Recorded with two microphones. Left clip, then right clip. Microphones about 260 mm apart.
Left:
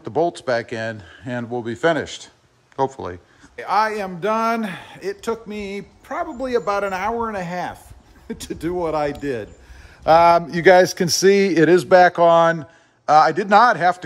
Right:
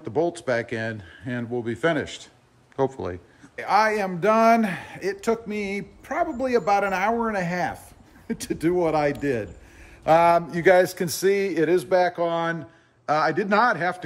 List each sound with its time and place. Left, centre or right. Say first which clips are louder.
0.0 s a man's voice: left 4 dB; centre
10.0 s a man's voice: left 5 dB; left